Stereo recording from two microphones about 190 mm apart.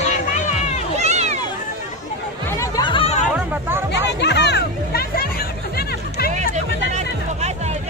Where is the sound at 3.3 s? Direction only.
10° right (ahead or behind).